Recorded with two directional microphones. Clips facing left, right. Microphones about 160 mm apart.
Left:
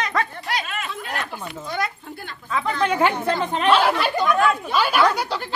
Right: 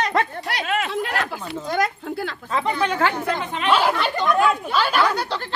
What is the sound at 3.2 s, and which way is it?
Speech, 35° left (ahead or behind).